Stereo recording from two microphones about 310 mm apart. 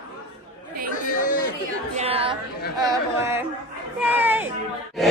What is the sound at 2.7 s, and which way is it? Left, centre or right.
Chatter, centre.